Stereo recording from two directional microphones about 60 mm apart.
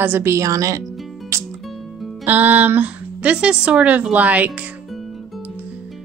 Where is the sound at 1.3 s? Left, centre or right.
Right.